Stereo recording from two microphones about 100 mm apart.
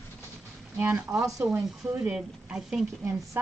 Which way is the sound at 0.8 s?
20° right (ahead or behind).